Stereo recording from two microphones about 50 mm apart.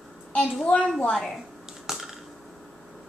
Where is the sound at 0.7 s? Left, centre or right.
Left.